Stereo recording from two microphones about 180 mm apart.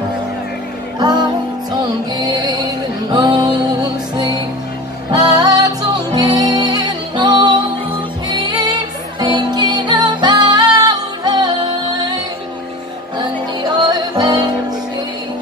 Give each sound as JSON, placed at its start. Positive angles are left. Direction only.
{"t": 0.9, "sound": "music", "side_deg": -25}
{"t": 13.7, "sound": "music", "side_deg": -25}